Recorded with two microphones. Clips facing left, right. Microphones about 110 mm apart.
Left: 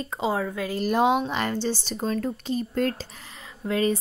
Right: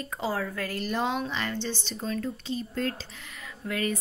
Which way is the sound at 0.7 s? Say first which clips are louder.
Left 8 dB; 50° left (ahead or behind).